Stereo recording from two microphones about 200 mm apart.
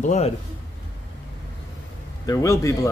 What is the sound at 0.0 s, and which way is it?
Speech, 35° left (ahead or behind).